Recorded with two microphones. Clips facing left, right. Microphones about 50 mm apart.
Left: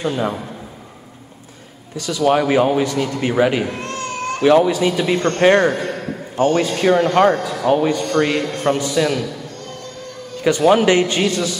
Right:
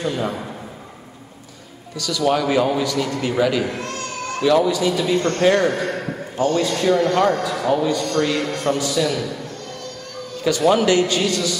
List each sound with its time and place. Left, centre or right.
0.0 s a man's voice: left
2.0 s a man's voice: left
10.4 s a man's voice: left